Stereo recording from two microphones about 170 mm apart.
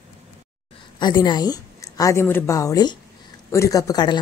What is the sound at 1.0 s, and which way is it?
A woman's voice, 25° left (ahead or behind).